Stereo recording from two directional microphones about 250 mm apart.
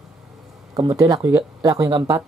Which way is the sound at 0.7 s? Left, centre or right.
Centre.